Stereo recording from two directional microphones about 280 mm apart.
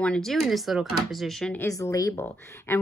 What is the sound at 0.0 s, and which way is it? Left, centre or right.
Speech, centre.